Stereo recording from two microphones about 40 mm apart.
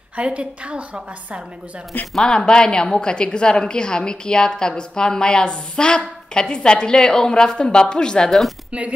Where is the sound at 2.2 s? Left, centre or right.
Centre.